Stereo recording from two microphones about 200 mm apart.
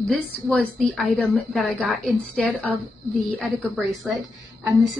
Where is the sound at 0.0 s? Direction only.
5° left (ahead or behind).